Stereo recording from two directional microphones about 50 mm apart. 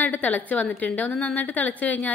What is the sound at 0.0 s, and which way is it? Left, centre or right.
A woman's voice, left.